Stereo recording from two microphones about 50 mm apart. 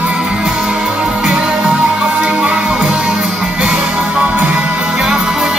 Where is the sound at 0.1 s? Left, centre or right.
Right.